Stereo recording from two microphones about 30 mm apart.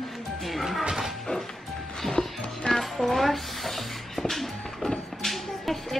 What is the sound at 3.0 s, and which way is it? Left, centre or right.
Speech, centre.